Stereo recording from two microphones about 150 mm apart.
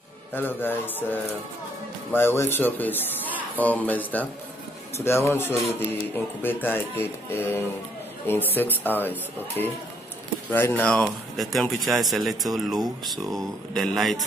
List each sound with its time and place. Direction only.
0.3 s speech: 15° left (ahead or behind)